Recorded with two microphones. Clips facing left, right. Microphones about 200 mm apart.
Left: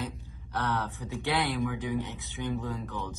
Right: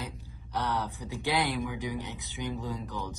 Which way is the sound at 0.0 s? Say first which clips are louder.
Left 4 dB; 15° right (ahead or behind).